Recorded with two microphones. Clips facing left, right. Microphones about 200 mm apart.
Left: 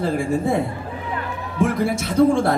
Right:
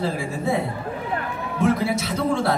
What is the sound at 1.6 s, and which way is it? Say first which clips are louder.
Speech: left 1 dB; 50° left (ahead or behind).